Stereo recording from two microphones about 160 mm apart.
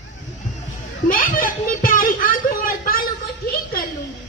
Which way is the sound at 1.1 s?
60° left (ahead or behind).